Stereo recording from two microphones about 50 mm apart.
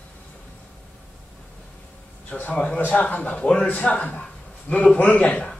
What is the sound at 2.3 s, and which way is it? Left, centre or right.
A man's voice, left.